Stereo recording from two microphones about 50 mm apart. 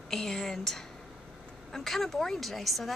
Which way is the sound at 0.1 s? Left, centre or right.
Centre.